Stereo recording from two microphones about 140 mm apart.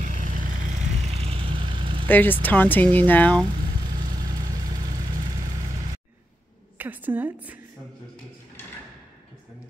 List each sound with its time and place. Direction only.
0.0 s vehicle: 70° right (ahead or behind)
1.0 s vehicle: 45° right (ahead or behind)
2.0 s speech: 15° left (ahead or behind)
6.8 s a woman's voice: 15° right (ahead or behind)